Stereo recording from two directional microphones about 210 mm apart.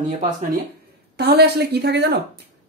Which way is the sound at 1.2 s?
50° right (ahead or behind).